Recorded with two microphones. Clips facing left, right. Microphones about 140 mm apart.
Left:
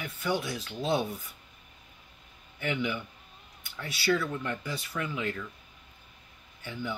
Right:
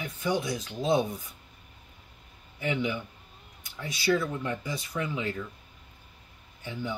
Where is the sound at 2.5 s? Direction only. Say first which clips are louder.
Right 2 dB; 30° right (ahead or behind).